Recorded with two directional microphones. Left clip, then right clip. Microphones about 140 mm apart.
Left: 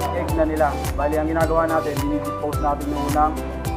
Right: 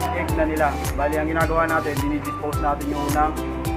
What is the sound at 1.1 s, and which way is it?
Speech, 25° right (ahead or behind).